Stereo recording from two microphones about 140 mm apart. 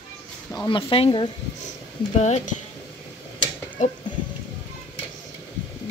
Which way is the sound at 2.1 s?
55° left (ahead or behind).